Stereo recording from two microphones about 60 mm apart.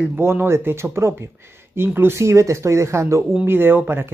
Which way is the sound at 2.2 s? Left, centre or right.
Right.